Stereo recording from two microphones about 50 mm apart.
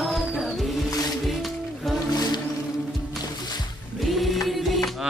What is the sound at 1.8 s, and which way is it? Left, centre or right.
Music, centre.